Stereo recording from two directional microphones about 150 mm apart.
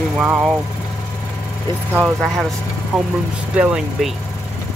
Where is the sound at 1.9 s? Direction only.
15° right (ahead or behind).